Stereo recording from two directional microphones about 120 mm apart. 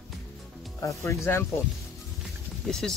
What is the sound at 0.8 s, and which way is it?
Speech, 25° left (ahead or behind).